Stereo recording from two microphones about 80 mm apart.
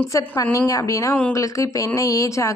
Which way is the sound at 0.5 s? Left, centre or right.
Left.